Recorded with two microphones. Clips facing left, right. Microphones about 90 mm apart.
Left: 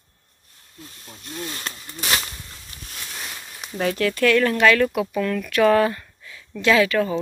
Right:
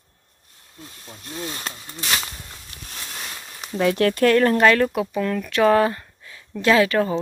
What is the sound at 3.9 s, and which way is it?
Speech, 45° right (ahead or behind).